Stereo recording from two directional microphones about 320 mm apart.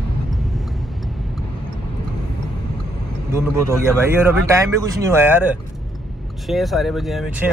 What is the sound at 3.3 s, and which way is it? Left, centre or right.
Speech, centre.